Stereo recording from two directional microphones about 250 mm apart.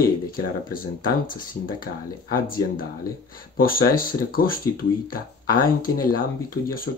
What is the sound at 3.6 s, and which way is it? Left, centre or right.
Speech, left.